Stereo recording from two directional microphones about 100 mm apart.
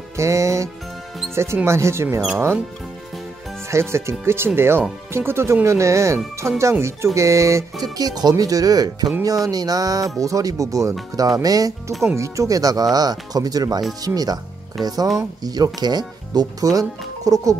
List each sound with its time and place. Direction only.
0.2 s speech: 30° right (ahead or behind)
3.7 s speech: 25° right (ahead or behind)
7.8 s speech: 40° right (ahead or behind)
11.9 s speech: centre (ahead or behind)
12.2 s speech: 35° right (ahead or behind)